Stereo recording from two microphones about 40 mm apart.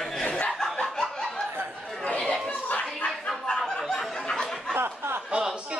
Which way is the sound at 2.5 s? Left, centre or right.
Left.